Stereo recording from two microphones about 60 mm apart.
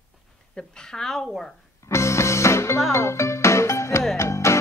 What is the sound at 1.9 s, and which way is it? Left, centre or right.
Music, left.